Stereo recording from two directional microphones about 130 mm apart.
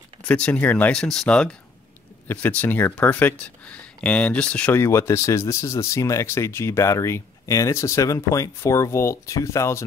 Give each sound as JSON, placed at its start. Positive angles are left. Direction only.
{"t": 0.3, "sound": "speech", "side_deg": 10}
{"t": 4.8, "sound": "speech", "side_deg": 20}